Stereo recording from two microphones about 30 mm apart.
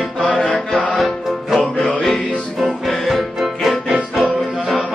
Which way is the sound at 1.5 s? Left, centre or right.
Centre.